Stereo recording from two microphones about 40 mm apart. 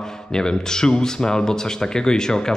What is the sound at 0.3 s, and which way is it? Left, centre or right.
Speech, centre.